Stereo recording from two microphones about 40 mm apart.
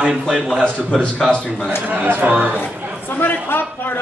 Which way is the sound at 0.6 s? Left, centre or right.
Centre.